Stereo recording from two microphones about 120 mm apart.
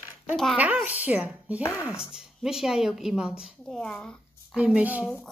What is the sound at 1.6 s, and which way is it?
Speech, 25° left (ahead or behind).